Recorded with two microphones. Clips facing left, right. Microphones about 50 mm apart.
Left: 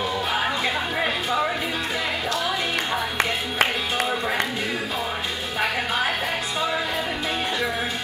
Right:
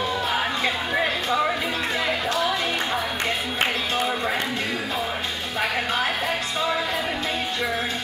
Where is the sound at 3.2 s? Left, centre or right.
Left.